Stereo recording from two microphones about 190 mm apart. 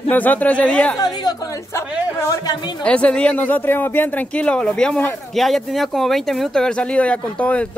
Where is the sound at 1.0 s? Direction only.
20° left (ahead or behind).